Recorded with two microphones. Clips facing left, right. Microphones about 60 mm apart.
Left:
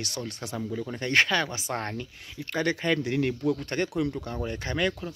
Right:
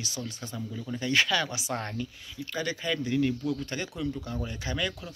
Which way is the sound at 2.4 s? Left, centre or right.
Left.